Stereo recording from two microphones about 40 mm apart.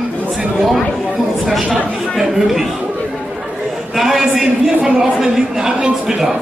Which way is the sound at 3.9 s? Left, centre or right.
Centre.